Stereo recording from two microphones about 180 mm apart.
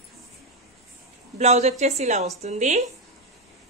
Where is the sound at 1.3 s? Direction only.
40° right (ahead or behind).